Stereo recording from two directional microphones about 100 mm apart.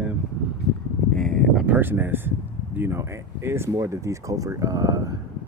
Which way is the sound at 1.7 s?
20° right (ahead or behind).